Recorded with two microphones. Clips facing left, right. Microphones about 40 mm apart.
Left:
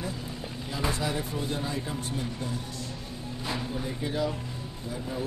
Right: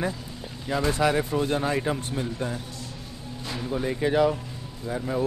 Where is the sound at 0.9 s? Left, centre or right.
Right.